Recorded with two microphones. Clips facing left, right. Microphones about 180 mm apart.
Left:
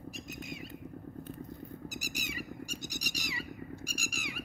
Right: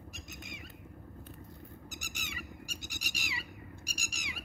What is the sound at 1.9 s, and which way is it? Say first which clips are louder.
Squawk: left 6 dB; 35° left (ahead or behind).